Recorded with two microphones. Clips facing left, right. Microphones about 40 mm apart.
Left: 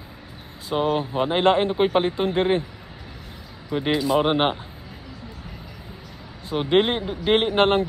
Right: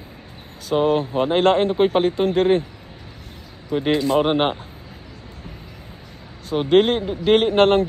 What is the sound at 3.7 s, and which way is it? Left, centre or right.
Speech, centre.